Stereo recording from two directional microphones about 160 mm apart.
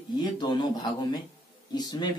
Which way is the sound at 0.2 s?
25° left (ahead or behind).